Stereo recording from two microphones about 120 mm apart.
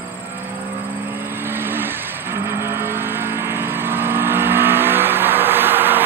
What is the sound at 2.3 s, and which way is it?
Vehicle, 20° right (ahead or behind).